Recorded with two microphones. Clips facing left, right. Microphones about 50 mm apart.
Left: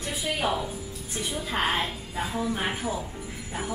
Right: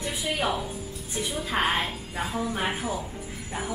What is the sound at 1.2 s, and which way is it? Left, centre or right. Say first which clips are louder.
A woman's voice: right 2 dB; centre.